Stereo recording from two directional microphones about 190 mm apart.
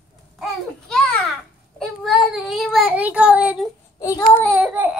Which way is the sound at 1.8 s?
Centre (ahead or behind).